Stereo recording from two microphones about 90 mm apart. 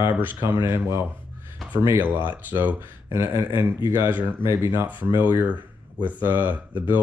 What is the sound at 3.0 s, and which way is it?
Speech, 30° right (ahead or behind).